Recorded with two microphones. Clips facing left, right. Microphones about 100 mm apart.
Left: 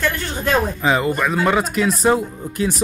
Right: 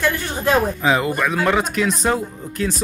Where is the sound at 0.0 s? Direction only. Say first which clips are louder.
Right 1 dB; 10° right (ahead or behind).